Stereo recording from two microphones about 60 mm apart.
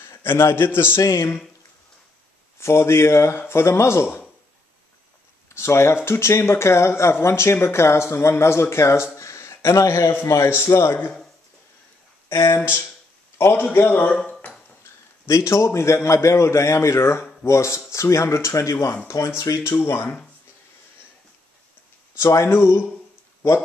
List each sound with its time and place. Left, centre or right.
0.0 s a man's voice: left
1.0 s speech: left
2.6 s speech: left
5.5 s speech: left
12.3 s speech: left
13.4 s a man's voice: left
14.8 s a man's voice: left
19.7 s speech: left
22.3 s speech: left